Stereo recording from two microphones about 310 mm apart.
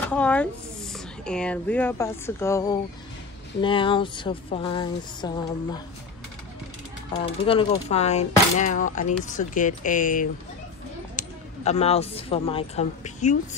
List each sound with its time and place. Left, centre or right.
0.1 s speech: centre
7.2 s speech: centre